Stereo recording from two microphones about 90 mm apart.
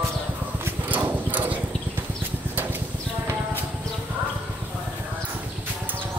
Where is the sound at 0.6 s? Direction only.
20° right (ahead or behind).